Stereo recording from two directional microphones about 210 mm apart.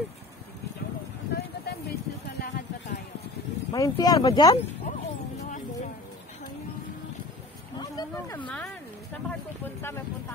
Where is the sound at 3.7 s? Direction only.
15° left (ahead or behind).